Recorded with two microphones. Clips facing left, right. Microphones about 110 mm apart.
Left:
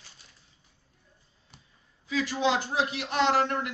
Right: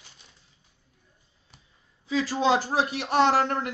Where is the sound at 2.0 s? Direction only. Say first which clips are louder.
Right 3 dB; 35° right (ahead or behind).